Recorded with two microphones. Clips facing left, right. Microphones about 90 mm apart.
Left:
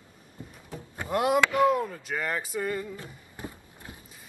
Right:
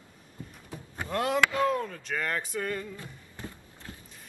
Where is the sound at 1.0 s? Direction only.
15° left (ahead or behind).